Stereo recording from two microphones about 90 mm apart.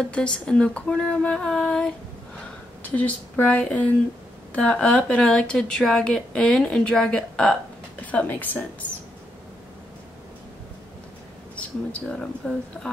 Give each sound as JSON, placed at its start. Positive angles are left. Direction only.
{"t": 0.0, "sound": "a woman's voice", "side_deg": 10}
{"t": 11.5, "sound": "speech", "side_deg": 10}